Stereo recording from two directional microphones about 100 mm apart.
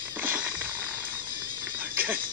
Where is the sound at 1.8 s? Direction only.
20° right (ahead or behind).